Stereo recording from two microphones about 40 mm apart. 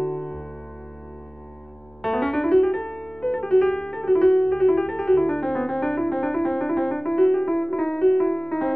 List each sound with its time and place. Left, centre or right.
0.0 s music: centre
2.0 s piano: centre